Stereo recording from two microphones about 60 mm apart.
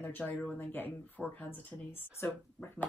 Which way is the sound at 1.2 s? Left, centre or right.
Left.